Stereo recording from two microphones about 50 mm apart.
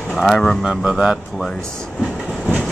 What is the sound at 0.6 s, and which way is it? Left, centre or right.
Speech, centre.